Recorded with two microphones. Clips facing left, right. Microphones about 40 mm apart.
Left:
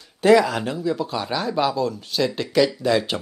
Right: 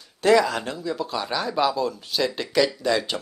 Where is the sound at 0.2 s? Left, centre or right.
Centre.